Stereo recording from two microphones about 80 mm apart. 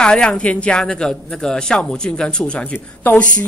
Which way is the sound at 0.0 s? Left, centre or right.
Centre.